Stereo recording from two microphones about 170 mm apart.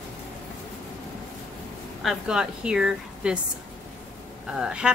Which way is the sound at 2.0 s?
5° right (ahead or behind).